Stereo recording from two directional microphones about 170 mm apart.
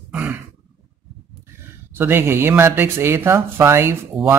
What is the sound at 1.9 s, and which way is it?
Speech, 15° right (ahead or behind).